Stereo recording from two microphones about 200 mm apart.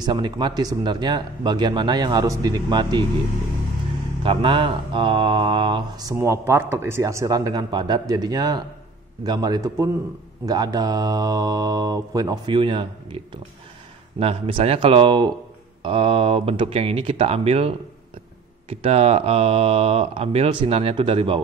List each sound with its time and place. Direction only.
0.0 s speech: 20° right (ahead or behind)
4.2 s speech: 25° right (ahead or behind)